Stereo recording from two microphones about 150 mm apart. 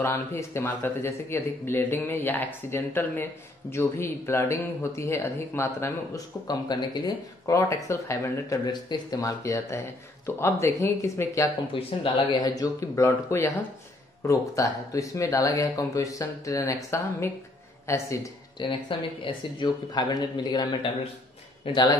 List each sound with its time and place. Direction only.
0.0 s speech: 15° left (ahead or behind)
11.7 s speech: 30° left (ahead or behind)
18.7 s speech: 35° left (ahead or behind)